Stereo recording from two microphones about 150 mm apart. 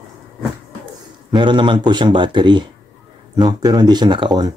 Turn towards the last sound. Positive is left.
turn(degrees=-30)  # may be behind; listen again after turning